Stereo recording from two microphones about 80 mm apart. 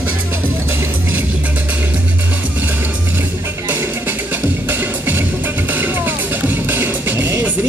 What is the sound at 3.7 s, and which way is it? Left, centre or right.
Music, right.